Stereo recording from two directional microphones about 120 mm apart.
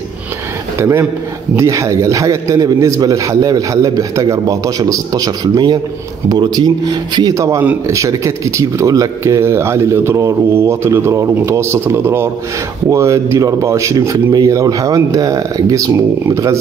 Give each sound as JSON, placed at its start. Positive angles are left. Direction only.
{"t": 0.7, "sound": "speech", "side_deg": -20}